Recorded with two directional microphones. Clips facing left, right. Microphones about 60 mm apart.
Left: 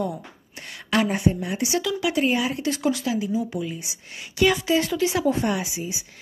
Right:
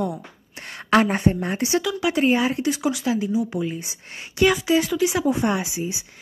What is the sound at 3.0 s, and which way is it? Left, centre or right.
A woman's voice, right.